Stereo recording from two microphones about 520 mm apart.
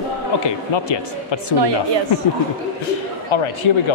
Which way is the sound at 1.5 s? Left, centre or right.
Right.